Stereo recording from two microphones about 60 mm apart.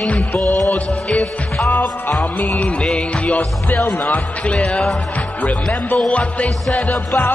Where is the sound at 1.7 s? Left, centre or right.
Left.